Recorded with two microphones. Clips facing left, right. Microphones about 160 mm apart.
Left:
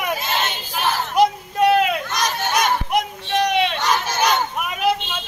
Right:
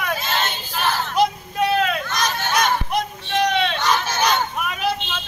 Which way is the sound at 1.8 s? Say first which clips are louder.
Left 1 dB; 15° left (ahead or behind).